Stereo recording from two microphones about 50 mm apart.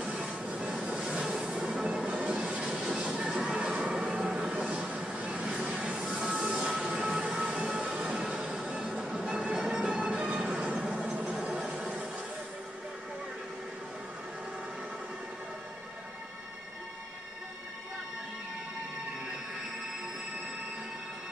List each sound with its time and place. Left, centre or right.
0.0 s train: right
0.6 s train: centre
0.8 s train: right
1.4 s music: centre
2.0 s train: right
3.2 s a sound: right
6.0 s train: centre
8.3 s music: centre